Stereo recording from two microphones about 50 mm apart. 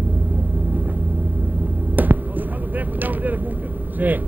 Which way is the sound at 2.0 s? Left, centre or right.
Right.